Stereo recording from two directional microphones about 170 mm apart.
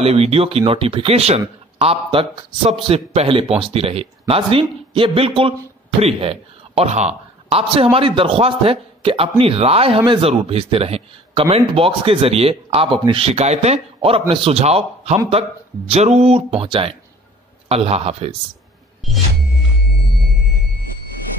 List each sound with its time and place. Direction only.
0.0 s a man's voice: 35° right (ahead or behind)
19.0 s music: centre (ahead or behind)